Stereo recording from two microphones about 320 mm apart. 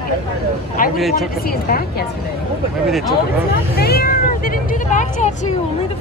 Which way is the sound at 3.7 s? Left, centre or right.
Left.